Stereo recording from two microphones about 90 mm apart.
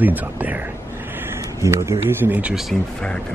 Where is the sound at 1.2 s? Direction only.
30° right (ahead or behind).